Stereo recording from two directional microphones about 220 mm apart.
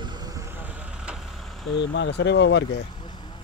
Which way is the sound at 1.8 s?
55° left (ahead or behind).